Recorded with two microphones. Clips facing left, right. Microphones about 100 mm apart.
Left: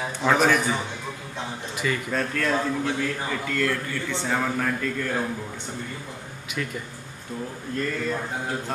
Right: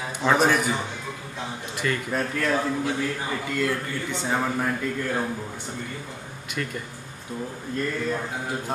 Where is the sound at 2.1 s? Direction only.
15° right (ahead or behind).